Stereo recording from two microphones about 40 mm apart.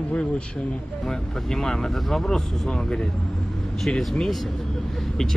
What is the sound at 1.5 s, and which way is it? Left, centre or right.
Speech, centre.